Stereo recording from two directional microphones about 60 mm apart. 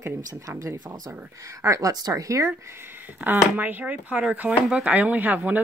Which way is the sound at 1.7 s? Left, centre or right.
Right.